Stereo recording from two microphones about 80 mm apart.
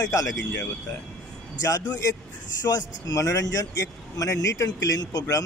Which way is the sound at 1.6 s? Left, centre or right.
Left.